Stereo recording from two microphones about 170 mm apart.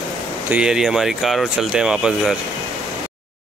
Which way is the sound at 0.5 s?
5° right (ahead or behind).